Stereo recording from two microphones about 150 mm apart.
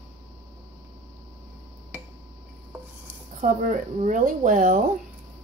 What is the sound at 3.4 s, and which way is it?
Speech, 55° right (ahead or behind).